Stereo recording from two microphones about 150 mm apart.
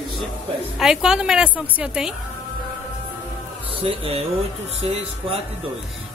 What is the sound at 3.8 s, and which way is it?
Speech, 40° right (ahead or behind).